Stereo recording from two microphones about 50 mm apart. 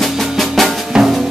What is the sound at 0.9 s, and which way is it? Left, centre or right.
Drum, centre.